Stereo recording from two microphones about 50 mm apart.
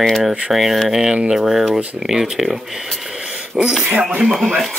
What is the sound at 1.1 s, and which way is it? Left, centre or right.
Speech, centre.